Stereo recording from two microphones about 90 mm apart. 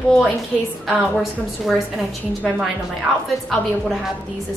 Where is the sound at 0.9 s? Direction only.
Centre (ahead or behind).